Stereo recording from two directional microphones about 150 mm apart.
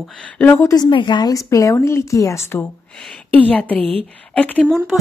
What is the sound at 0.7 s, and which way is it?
A woman's voice, 30° left (ahead or behind).